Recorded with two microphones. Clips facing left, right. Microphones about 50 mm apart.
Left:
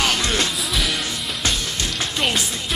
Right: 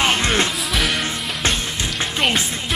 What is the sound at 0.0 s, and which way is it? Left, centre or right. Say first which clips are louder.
Music: right 3 dB; right.